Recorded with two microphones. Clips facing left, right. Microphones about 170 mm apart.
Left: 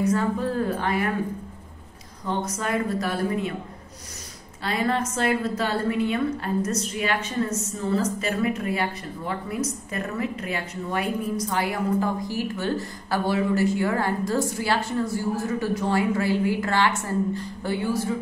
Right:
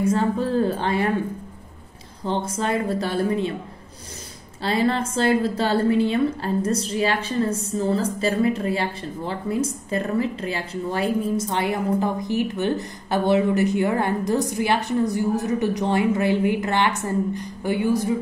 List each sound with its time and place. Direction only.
0.0 s a woman's voice: 30° right (ahead or behind)
2.2 s a woman's voice: 30° right (ahead or behind)
4.6 s a woman's voice: 30° right (ahead or behind)